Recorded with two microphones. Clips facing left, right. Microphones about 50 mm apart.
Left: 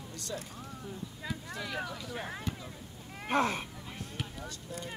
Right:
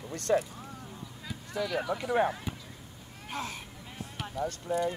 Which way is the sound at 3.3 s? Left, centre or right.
Left.